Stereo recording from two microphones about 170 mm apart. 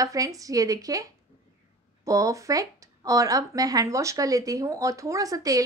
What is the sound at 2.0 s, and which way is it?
A woman's voice, 20° right (ahead or behind).